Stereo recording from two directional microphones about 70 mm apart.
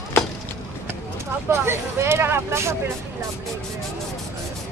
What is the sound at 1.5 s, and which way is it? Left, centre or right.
Vehicle, right.